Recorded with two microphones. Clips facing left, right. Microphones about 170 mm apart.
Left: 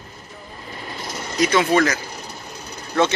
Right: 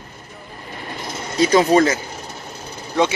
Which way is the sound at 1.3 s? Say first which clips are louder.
Right 4 dB; 30° right (ahead or behind).